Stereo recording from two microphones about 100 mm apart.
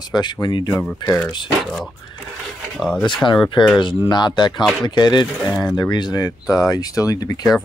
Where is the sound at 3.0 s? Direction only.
50° left (ahead or behind).